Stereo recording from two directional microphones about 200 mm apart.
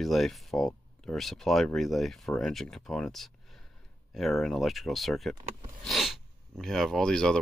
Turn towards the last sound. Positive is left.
turn(degrees=5)  # may be behind; listen again after turning